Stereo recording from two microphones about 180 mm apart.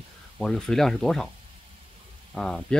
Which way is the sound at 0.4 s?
5° left (ahead or behind).